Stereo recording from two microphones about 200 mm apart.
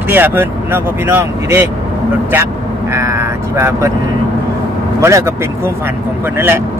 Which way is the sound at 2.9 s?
15° right (ahead or behind).